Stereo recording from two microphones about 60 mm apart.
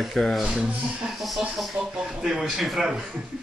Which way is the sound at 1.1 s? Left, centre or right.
Centre.